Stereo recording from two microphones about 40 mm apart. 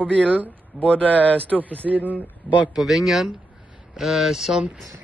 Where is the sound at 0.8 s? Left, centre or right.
Left.